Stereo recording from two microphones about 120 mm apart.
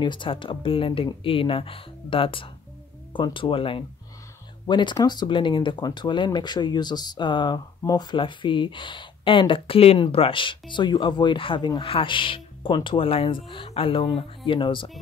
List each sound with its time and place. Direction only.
0.0 s speech: 40° left (ahead or behind)